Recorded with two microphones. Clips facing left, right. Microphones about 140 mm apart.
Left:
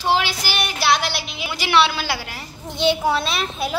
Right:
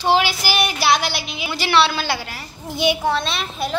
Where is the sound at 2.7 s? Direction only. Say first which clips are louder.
Even; 15° right (ahead or behind).